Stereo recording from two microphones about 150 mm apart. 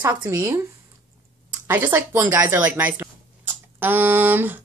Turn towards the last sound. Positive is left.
turn(degrees=-15)  # may be behind; listen again after turning